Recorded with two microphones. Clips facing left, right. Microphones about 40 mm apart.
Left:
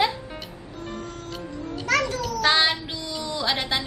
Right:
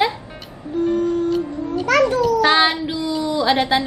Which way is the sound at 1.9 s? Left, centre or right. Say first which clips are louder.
Right 8 dB; right.